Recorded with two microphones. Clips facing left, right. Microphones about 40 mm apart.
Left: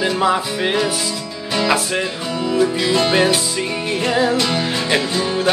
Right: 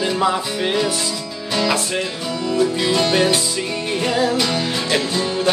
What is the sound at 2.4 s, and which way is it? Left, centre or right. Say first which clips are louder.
Music: left 1 dB; centre.